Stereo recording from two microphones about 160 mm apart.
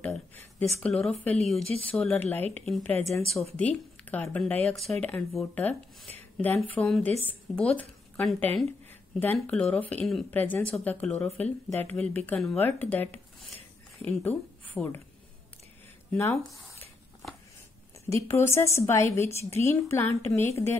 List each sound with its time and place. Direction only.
0.0 s a sound: 10° left (ahead or behind)
0.7 s a woman's voice: 5° left (ahead or behind)
16.1 s speech: 15° left (ahead or behind)
18.1 s a woman's voice: 15° left (ahead or behind)